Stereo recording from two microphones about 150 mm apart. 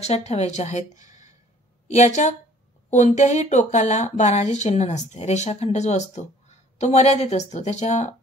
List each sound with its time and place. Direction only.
0.0 s speech: 45° left (ahead or behind)